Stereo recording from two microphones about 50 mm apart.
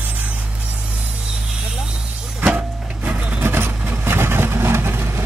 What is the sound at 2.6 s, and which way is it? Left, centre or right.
Printer, right.